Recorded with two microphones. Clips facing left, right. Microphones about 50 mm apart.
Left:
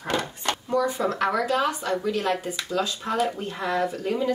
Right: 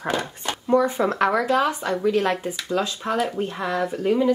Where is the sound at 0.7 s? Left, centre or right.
Right.